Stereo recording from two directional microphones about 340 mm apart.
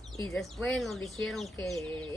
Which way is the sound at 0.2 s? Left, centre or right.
Centre.